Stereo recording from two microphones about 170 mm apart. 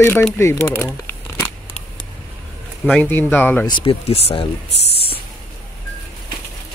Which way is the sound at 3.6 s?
30° left (ahead or behind).